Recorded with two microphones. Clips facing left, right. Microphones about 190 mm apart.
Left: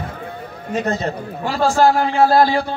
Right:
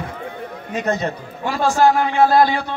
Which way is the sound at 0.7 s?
35° left (ahead or behind).